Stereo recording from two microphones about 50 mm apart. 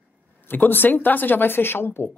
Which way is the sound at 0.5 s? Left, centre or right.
Left.